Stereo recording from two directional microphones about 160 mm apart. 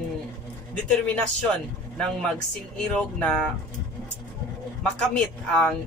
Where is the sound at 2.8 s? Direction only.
5° left (ahead or behind).